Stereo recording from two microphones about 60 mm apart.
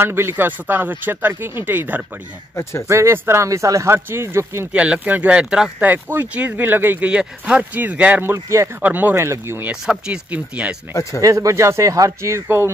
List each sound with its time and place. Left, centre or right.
0.0 s speech: right
2.9 s speech: right
3.4 s speech: right
3.9 s speech: right
4.7 s speech: right
5.8 s speech: right
7.1 s speech: centre
9.1 s speech: right
9.7 s speech: centre
10.9 s speech: left
11.1 s speech: right